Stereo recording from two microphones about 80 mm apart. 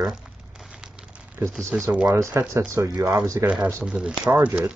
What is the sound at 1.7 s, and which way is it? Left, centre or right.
Speech, right.